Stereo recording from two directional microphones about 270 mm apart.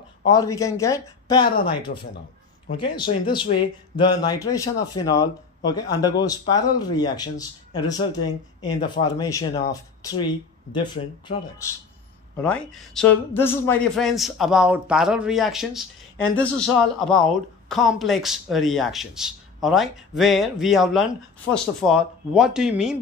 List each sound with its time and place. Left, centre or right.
0.2 s speech: centre
2.8 s speech: centre
12.4 s speech: centre